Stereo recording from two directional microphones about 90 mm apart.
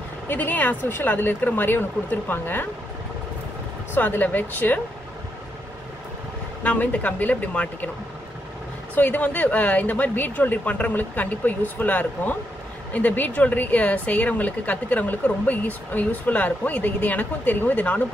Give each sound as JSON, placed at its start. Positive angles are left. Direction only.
{"t": 0.3, "sound": "speech", "side_deg": 20}
{"t": 3.9, "sound": "speech", "side_deg": 20}
{"t": 6.6, "sound": "a woman's voice", "side_deg": 15}
{"t": 8.9, "sound": "a woman's voice", "side_deg": 15}